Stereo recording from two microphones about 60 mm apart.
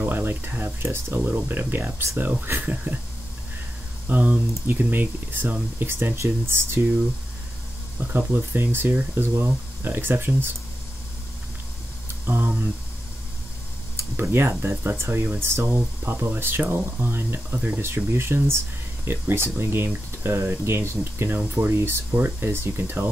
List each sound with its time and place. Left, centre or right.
0.0 s speech: right
4.1 s speech: right
8.1 s speech: right
12.3 s a sound: right
14.3 s speech: right